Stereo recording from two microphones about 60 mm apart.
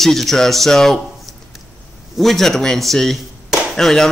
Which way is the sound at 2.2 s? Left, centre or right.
Centre.